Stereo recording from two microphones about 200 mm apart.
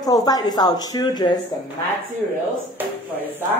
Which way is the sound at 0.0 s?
20° left (ahead or behind).